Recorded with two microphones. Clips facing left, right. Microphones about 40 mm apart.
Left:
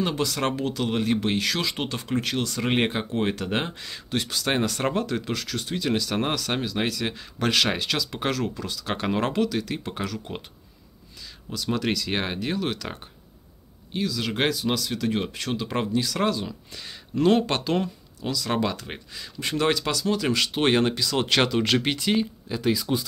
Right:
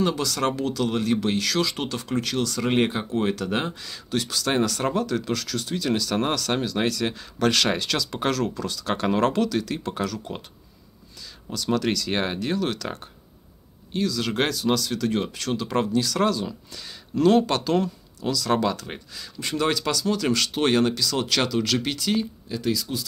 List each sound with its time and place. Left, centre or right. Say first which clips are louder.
0.0 s speech: right 2 dB; left
11.5 s speech: right 2 dB; centre
19.4 s speech: even; left
19.7 s speech: even; centre